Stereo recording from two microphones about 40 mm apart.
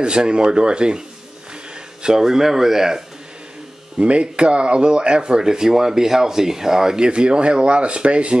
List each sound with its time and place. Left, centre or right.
0.0 s speech: right
2.0 s speech: centre
4.0 s speech: right